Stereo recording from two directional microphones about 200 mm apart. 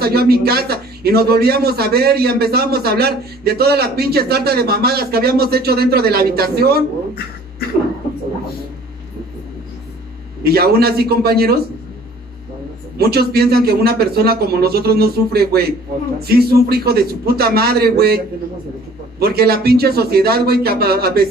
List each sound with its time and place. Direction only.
0.0 s a man's voice: 50° right (ahead or behind)
10.4 s a man's voice: 50° right (ahead or behind)
12.9 s a man's voice: 50° right (ahead or behind)